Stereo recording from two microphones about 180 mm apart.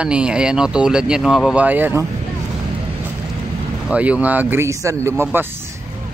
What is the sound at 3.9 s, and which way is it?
Speech, 10° right (ahead or behind).